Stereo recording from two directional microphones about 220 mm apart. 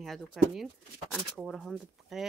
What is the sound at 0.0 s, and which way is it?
A woman's voice, centre (ahead or behind).